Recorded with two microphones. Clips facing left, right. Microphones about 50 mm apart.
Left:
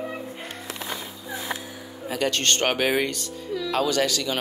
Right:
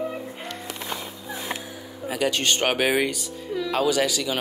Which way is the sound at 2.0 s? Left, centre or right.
Centre.